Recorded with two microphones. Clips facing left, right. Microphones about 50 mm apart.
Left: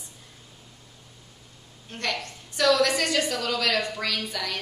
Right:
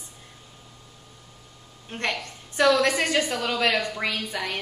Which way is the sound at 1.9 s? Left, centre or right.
Right.